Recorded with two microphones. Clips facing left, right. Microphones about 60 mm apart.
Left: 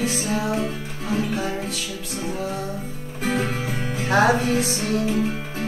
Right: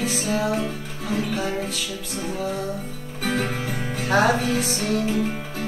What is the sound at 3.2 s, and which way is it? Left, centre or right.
Music, left.